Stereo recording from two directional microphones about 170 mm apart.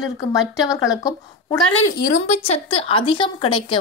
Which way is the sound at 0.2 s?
20° left (ahead or behind).